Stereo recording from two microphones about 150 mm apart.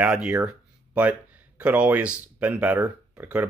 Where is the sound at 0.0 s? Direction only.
10° right (ahead or behind).